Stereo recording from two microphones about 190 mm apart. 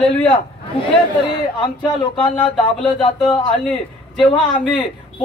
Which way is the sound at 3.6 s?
5° left (ahead or behind).